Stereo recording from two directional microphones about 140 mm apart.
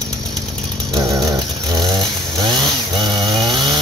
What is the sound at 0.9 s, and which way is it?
Chainsaw, 25° right (ahead or behind).